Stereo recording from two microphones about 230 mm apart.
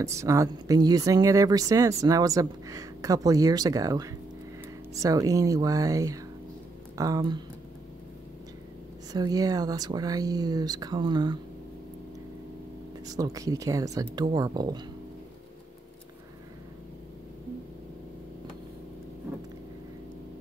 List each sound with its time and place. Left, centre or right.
0.0 s speech: centre
9.1 s speech: centre
13.0 s speech: centre